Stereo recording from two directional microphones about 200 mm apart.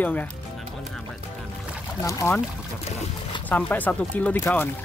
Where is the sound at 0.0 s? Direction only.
10° left (ahead or behind).